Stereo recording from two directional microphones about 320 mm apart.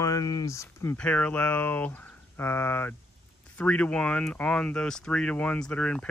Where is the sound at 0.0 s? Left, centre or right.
Centre.